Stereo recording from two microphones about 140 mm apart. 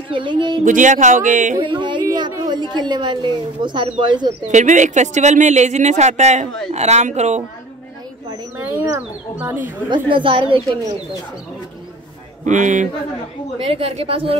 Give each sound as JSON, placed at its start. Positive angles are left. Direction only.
{"t": 0.1, "sound": "a woman's voice", "side_deg": -35}
{"t": 0.7, "sound": "speech", "side_deg": -65}
{"t": 1.6, "sound": "a woman's voice", "side_deg": -35}
{"t": 4.5, "sound": "speech", "side_deg": -60}
{"t": 8.3, "sound": "speech", "side_deg": -15}
{"t": 9.8, "sound": "a woman's voice", "side_deg": -35}
{"t": 12.4, "sound": "speech", "side_deg": -60}
{"t": 13.7, "sound": "speech", "side_deg": -45}